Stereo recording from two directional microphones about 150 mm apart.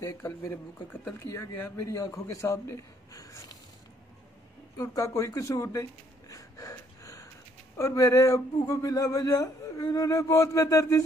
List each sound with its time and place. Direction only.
0.0 s speech: 20° left (ahead or behind)
4.7 s speech: 20° left (ahead or behind)